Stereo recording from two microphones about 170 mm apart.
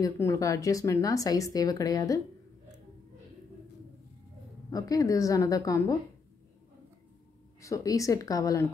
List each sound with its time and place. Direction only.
0.0 s speech: 20° left (ahead or behind)
4.6 s speech: 20° left (ahead or behind)
7.6 s speech: 20° left (ahead or behind)